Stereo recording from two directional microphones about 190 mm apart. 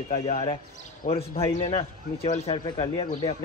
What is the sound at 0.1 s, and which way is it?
Speech, 35° left (ahead or behind).